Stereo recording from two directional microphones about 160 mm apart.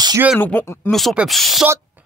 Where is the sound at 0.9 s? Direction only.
Centre (ahead or behind).